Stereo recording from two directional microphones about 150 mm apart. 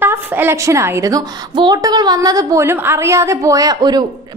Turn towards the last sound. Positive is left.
turn(degrees=-25)  # may be behind; listen again after turning